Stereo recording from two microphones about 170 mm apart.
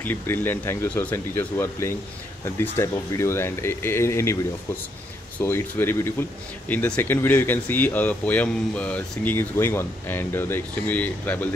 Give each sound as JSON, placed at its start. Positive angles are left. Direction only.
{"t": 0.0, "sound": "speech", "side_deg": 10}
{"t": 5.4, "sound": "speech", "side_deg": 15}